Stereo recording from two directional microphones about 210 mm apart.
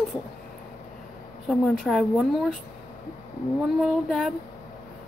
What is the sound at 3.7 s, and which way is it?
Speech, centre (ahead or behind).